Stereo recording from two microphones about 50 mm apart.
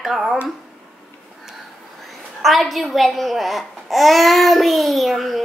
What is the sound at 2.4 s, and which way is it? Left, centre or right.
Speech, centre.